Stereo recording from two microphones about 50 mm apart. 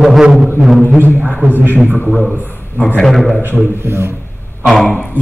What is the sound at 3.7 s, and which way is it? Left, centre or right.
Speech, right.